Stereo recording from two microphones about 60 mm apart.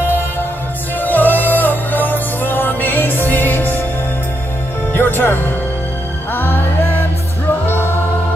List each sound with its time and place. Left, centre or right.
1.0 s music: left
4.9 s music: left
6.3 s music: left